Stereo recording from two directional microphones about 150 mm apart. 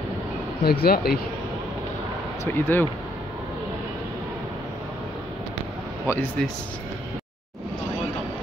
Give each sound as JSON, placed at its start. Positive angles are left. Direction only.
{"t": 0.7, "sound": "speech", "side_deg": 90}
{"t": 2.4, "sound": "speech", "side_deg": 15}
{"t": 6.0, "sound": "speech", "side_deg": 15}